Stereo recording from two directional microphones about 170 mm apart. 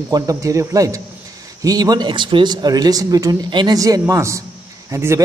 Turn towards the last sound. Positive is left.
turn(degrees=-15)  # may be behind; listen again after turning